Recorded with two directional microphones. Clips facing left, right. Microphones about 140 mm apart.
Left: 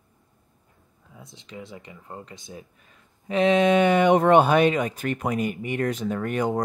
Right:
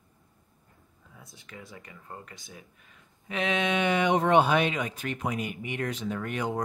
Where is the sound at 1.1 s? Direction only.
20° left (ahead or behind).